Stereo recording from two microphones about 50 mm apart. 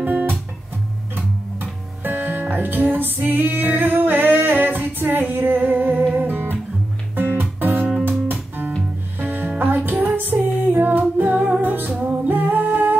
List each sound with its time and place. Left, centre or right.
0.0 s music: right
3.3 s female singing: right
5.3 s music: right